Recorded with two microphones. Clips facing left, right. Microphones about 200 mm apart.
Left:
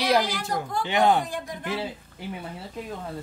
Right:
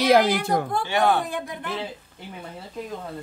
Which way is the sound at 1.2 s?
60° right (ahead or behind).